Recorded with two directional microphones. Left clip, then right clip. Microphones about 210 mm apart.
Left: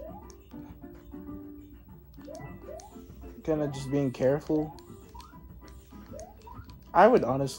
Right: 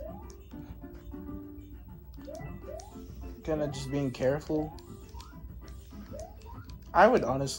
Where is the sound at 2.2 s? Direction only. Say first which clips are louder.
Even; 50° left (ahead or behind).